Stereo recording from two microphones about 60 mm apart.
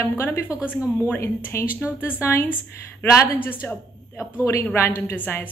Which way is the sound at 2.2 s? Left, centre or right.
Left.